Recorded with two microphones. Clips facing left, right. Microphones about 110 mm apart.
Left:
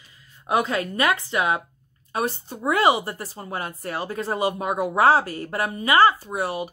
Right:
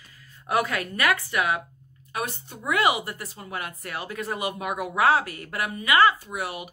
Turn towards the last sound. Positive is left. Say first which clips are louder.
# left 6 dB
turn(degrees=35)  # may be behind; listen again after turning